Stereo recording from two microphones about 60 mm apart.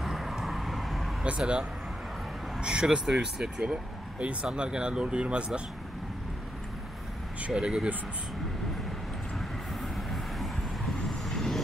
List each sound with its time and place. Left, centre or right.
0.0 s vehicle: centre
1.2 s speech: centre
7.4 s speech: centre
9.8 s vehicle: centre